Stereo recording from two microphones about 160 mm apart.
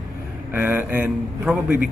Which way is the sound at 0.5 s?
10° right (ahead or behind).